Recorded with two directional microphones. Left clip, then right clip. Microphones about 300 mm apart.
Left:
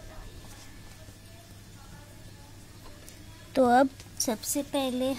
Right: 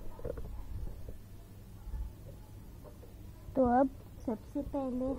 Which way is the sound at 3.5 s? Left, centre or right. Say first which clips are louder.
Left 6 dB; left.